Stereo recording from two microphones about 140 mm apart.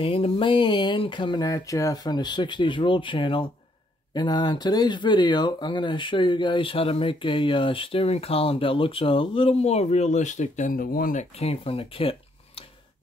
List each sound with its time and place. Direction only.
0.0 s speech: 40° left (ahead or behind); by 11.2 s 85° left
11.3 s speech: 45° left (ahead or behind)